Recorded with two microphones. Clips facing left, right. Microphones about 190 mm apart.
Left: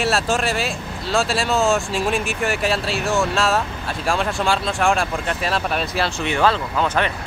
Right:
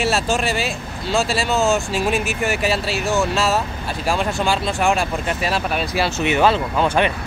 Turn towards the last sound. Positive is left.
turn(degrees=-15)  # may be behind; listen again after turning